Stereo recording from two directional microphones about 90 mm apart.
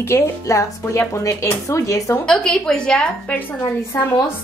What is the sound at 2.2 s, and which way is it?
A woman's voice, 10° left (ahead or behind).